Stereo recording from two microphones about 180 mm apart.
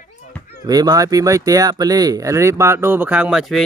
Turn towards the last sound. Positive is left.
turn(degrees=0)  # may be behind; listen again after turning